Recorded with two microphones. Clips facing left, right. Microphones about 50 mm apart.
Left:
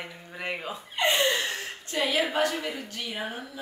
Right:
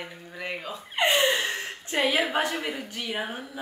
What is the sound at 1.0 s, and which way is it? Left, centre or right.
A woman's voice, right.